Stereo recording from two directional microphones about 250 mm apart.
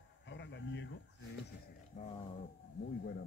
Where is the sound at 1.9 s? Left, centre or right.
Left.